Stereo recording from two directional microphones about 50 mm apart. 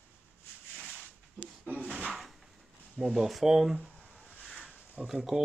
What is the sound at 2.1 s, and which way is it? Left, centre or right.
Drawer open or close, centre.